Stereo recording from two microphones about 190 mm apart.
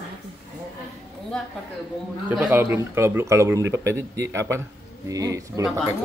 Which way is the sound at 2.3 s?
10° right (ahead or behind).